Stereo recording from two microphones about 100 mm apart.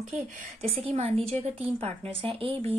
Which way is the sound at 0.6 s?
80° right.